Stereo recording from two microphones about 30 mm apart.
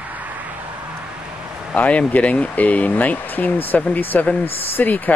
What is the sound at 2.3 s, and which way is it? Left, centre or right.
Speech, left.